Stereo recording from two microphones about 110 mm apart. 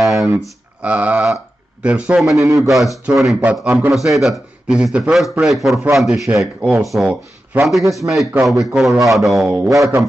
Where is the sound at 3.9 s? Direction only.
Centre (ahead or behind).